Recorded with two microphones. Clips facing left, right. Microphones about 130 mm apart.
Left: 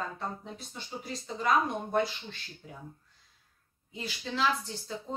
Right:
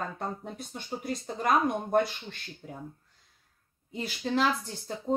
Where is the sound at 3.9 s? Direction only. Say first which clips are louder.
Right 6 dB; 50° right (ahead or behind).